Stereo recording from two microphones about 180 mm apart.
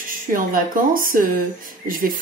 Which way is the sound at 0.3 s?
50° right (ahead or behind).